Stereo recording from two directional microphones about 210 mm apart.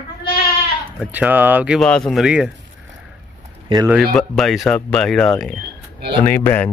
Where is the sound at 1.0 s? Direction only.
5° right (ahead or behind).